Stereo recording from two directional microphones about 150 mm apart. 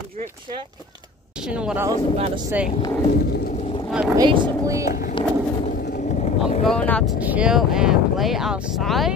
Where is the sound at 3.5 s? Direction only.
40° left (ahead or behind).